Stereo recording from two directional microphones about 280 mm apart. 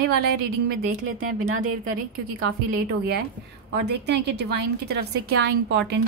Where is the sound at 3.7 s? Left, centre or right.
Right.